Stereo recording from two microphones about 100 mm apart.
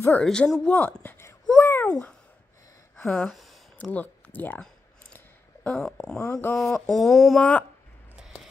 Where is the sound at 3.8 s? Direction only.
15° left (ahead or behind).